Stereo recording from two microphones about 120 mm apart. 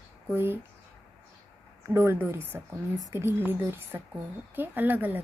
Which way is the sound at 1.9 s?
20° right (ahead or behind).